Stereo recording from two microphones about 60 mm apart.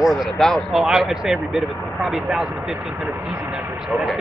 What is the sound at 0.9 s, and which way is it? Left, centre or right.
Speech, centre.